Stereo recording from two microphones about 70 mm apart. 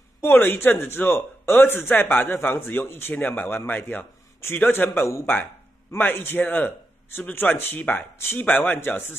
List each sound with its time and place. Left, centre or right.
0.2 s a man's voice: left
5.2 s a man's voice: left
8.2 s a man's voice: left